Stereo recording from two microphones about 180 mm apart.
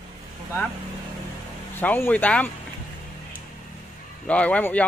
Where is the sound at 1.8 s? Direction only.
10° left (ahead or behind).